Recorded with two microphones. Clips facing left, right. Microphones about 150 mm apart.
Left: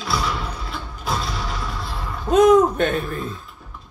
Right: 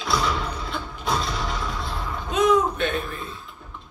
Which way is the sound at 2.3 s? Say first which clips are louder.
Left 7 dB; 45° left (ahead or behind).